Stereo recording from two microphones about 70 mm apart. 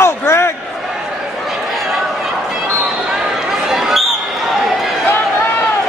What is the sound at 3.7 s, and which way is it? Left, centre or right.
Basketball bounce, centre.